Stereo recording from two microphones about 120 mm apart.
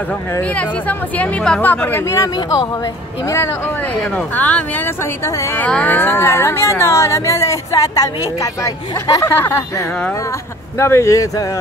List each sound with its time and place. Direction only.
0.4 s speech: 10° left (ahead or behind)
2.3 s speech: 35° left (ahead or behind)
4.4 s speech: 10° left (ahead or behind); by 11.4 s 25° left (ahead or behind)